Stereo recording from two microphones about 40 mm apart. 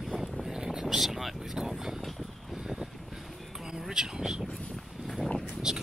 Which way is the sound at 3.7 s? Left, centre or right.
Centre.